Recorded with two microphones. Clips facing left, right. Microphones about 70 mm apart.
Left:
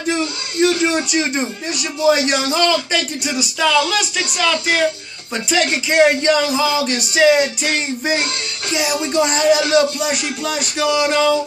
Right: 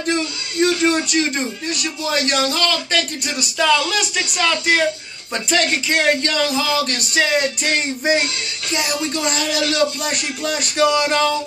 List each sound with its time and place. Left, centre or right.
0.0 s speech: centre
3.3 s speech: centre
5.5 s speech: centre
8.9 s speech: centre
9.9 s speech: centre